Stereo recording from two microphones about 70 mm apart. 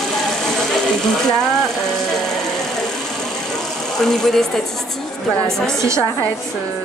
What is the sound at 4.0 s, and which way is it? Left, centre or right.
Speech, centre.